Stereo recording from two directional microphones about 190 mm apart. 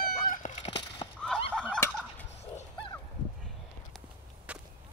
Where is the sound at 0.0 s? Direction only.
45° left (ahead or behind).